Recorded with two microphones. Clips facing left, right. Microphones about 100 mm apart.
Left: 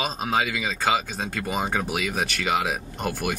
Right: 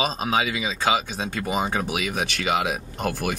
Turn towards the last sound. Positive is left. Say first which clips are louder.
# right 1 dB
turn(degrees=0)  # may be behind; listen again after turning